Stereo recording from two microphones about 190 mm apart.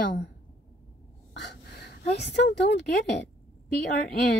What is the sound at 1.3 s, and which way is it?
A woman's voice, 65° left (ahead or behind).